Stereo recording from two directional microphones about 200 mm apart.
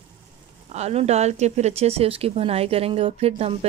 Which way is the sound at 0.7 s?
35° right (ahead or behind).